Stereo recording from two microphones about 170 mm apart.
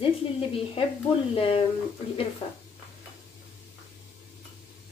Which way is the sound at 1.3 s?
35° left (ahead or behind).